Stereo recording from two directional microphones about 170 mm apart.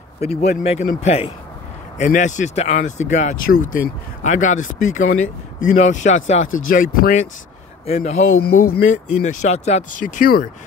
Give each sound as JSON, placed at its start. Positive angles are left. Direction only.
{"t": 0.2, "sound": "speech", "side_deg": 40}
{"t": 2.0, "sound": "speech", "side_deg": 45}
{"t": 7.8, "sound": "speech", "side_deg": 40}
{"t": 8.4, "sound": "speech", "side_deg": 65}
{"t": 8.9, "sound": "speech", "side_deg": 45}